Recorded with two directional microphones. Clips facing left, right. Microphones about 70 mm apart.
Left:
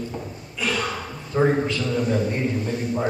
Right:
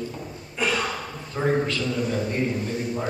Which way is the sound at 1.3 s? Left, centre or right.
Centre.